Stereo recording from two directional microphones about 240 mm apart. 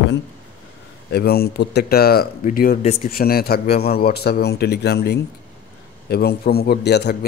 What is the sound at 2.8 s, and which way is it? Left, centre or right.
Speech, left.